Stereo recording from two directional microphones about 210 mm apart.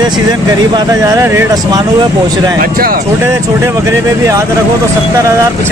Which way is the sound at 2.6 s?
45° right (ahead or behind).